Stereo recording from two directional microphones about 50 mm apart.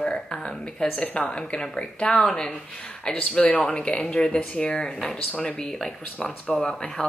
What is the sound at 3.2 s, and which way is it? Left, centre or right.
Speech, left.